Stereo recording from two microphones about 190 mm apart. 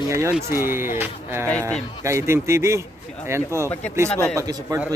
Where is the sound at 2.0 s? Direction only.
15° right (ahead or behind).